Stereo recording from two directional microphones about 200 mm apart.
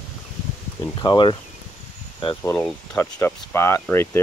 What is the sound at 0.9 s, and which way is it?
Speech, 25° left (ahead or behind).